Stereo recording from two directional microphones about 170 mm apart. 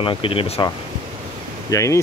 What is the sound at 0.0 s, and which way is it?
Speech, 30° left (ahead or behind).